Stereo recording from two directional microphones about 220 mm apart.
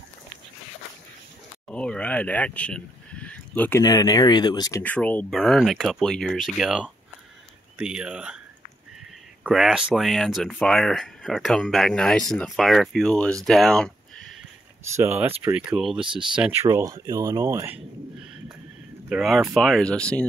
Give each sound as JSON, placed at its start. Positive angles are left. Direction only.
{"t": 1.7, "sound": "speech", "side_deg": 5}
{"t": 9.4, "sound": "speech", "side_deg": 0}
{"t": 13.5, "sound": "a sound", "side_deg": 0}
{"t": 15.0, "sound": "speech", "side_deg": -10}
{"t": 16.0, "sound": "speech", "side_deg": -20}
{"t": 16.3, "sound": "speech", "side_deg": -10}
{"t": 19.0, "sound": "speech", "side_deg": 0}